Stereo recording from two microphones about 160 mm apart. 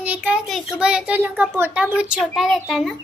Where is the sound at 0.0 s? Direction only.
10° right (ahead or behind).